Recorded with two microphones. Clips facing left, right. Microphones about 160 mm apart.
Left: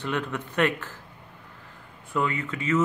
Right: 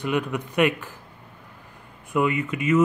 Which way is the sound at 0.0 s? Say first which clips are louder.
Right 4 dB; 10° right (ahead or behind).